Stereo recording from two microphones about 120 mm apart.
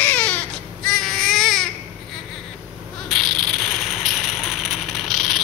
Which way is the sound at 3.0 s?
Centre (ahead or behind).